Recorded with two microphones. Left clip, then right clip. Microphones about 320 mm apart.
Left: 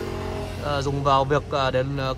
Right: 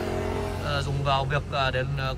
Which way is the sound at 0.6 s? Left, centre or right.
Centre.